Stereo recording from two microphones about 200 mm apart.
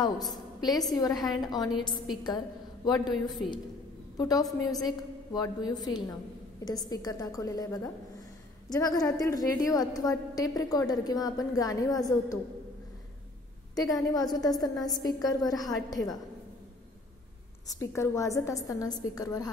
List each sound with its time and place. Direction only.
0.3 s a woman's voice: 20° left (ahead or behind)
13.7 s a woman's voice: 15° left (ahead or behind)
17.6 s a woman's voice: 15° left (ahead or behind)